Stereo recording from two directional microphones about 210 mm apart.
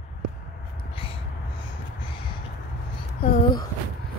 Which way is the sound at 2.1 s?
25° left (ahead or behind).